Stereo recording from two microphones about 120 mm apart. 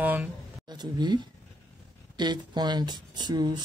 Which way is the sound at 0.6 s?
35° right (ahead or behind).